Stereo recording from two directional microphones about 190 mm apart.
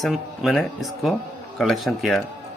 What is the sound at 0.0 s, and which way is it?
Speech, centre (ahead or behind).